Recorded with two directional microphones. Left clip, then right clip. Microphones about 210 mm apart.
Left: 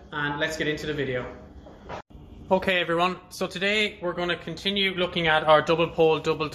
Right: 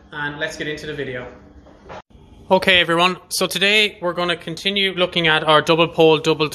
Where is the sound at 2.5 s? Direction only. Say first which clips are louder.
Right 9 dB; 50° right (ahead or behind).